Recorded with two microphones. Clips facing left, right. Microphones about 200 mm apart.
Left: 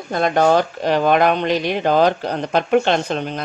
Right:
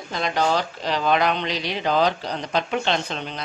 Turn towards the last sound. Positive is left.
turn(degrees=50)  # may be behind; listen again after turning